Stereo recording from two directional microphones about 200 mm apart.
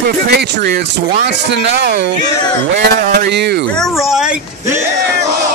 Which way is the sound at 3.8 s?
Centre (ahead or behind).